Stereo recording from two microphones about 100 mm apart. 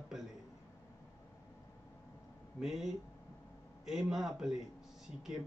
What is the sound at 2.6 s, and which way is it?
Speech, 5° right (ahead or behind).